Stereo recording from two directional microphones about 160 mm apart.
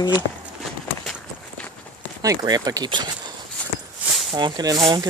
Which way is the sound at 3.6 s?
10° left (ahead or behind).